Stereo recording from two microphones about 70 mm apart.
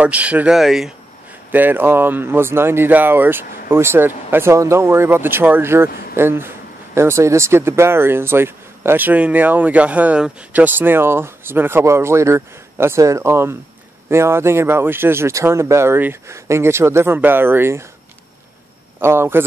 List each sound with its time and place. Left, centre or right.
0.0 s speech: right
0.5 s speech: centre
1.5 s speech: right
18.9 s speech: right